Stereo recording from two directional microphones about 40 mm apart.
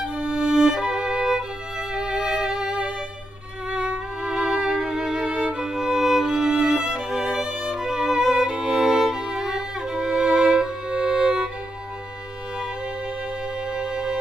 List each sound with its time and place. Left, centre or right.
0.0 s music: right
5.6 s violin: centre
6.7 s music: centre
7.4 s music: centre
13.7 s music: right